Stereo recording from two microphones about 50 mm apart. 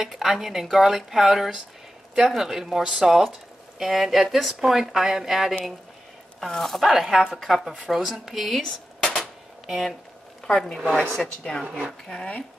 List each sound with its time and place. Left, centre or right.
0.0 s speech: centre
8.6 s dishes: centre
9.7 s speech: centre
10.4 s a sound: centre
10.8 s speech: centre
11.4 s speech: centre